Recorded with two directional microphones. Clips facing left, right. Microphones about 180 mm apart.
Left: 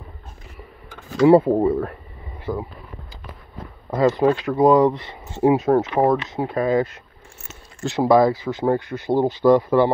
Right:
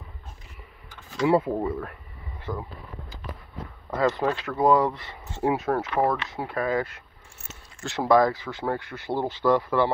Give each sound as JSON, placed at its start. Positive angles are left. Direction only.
{"t": 1.3, "sound": "speech", "side_deg": 35}
{"t": 2.5, "sound": "speech", "side_deg": 10}
{"t": 4.4, "sound": "speech", "side_deg": 15}